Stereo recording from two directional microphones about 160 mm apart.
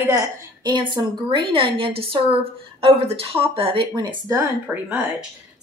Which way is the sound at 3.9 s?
20° right (ahead or behind).